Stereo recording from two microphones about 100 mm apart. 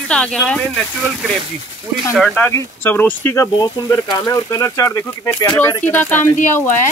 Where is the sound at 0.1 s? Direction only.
10° left (ahead or behind).